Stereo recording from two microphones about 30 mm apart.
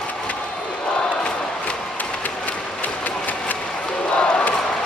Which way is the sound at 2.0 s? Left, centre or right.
Left.